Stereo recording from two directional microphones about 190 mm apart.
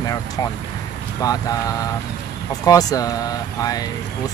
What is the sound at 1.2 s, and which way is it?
Speech, 20° left (ahead or behind).